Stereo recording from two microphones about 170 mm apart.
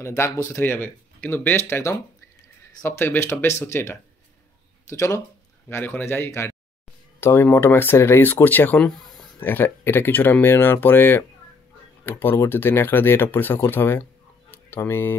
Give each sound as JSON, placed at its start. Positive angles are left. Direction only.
{"t": 0.0, "sound": "speech", "side_deg": 15}
{"t": 9.4, "sound": "speech", "side_deg": 10}